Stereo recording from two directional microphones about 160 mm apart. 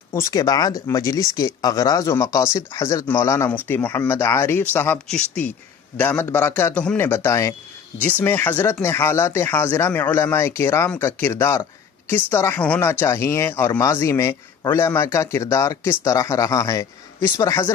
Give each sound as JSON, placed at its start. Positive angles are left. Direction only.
{"t": 0.1, "sound": "speech", "side_deg": 20}